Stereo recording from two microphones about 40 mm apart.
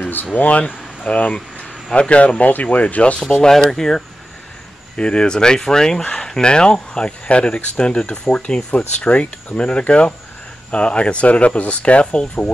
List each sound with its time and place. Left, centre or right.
0.3 s speech: left
3.2 s speech: centre
4.9 s speech: left